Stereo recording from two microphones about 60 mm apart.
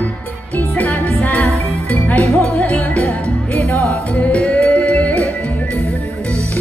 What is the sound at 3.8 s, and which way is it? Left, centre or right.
Music, left.